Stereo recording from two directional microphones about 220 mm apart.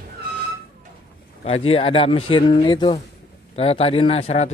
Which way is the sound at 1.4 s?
25° left (ahead or behind).